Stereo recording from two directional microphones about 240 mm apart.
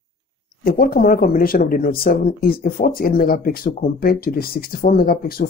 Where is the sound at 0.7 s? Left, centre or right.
Left.